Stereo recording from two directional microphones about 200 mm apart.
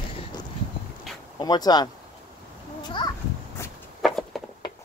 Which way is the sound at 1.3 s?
20° left (ahead or behind).